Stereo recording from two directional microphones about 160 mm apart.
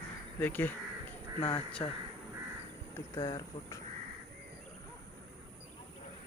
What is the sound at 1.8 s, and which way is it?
Speech, 25° left (ahead or behind).